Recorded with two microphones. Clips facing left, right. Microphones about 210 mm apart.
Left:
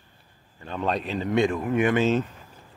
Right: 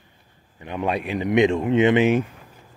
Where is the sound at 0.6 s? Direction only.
15° right (ahead or behind).